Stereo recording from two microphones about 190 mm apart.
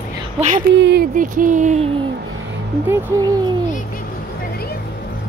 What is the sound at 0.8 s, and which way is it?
Speech, 60° right (ahead or behind).